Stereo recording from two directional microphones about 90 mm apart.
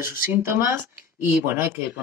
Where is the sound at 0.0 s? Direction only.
25° right (ahead or behind).